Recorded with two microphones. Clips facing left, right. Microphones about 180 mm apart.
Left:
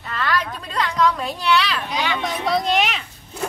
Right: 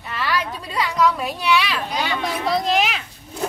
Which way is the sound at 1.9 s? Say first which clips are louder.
Even; 40° right (ahead or behind).